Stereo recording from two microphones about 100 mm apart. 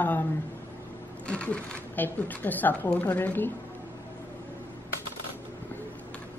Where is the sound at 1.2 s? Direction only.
10° left (ahead or behind).